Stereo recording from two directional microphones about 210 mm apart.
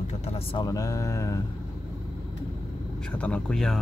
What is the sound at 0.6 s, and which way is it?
Speech, 15° left (ahead or behind).